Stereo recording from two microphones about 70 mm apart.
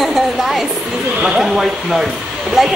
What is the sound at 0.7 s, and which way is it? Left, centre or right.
Speech, centre.